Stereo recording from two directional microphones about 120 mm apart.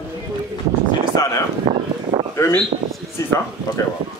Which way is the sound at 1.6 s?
40° right (ahead or behind).